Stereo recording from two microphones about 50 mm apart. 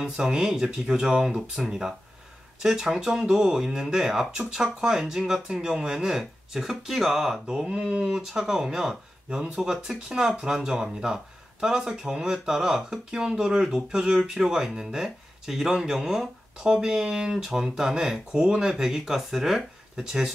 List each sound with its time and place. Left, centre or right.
0.0 s speech: centre
7.4 s speech: centre